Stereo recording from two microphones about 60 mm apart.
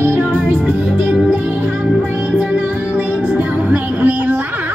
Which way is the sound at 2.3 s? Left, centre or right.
Right.